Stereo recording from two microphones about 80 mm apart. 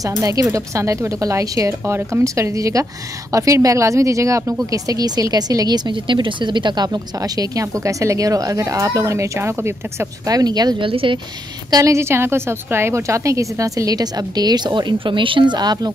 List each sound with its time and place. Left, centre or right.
0.2 s a woman's voice: right
1.7 s a woman's voice: right
5.9 s a woman's voice: right
10.2 s speech: right
11.7 s a woman's voice: right